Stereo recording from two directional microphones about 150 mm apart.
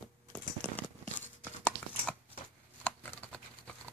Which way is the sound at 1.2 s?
10° left (ahead or behind).